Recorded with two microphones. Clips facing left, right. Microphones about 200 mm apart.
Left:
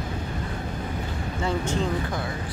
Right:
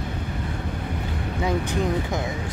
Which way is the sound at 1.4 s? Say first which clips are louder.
Right 2 dB; 15° right (ahead or behind).